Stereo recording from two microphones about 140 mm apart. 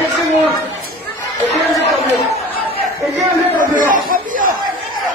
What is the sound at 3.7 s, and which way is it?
Chatter, 75° right (ahead or behind).